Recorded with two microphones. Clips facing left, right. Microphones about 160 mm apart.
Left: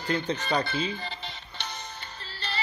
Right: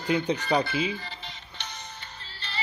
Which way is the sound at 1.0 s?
30° left (ahead or behind).